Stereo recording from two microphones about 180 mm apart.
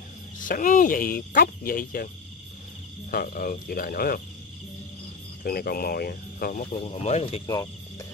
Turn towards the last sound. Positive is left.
turn(degrees=35)  # may be behind; listen again after turning